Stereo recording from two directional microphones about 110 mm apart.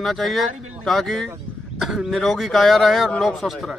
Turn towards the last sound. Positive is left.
turn(degrees=0)  # may be behind; listen again after turning